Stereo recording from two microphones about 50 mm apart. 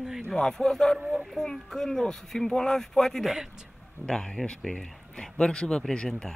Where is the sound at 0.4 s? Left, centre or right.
Centre.